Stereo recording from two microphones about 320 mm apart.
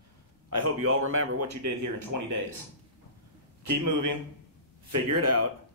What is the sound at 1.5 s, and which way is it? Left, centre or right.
Speech, right.